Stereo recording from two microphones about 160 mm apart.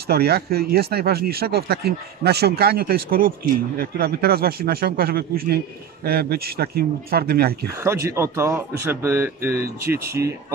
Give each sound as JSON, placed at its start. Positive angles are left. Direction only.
{"t": 0.0, "sound": "speech", "side_deg": -80}
{"t": 7.8, "sound": "speech", "side_deg": -15}